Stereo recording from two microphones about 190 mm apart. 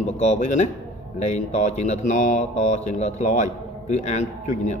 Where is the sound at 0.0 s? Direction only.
35° left (ahead or behind).